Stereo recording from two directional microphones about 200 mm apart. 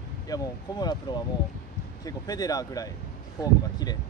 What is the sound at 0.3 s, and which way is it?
Speech, 20° left (ahead or behind).